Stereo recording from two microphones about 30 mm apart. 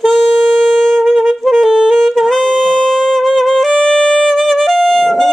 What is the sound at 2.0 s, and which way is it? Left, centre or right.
Music, centre.